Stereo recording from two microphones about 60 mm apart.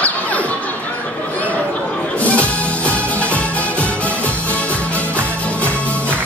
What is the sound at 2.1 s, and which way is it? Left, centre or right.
Music, left.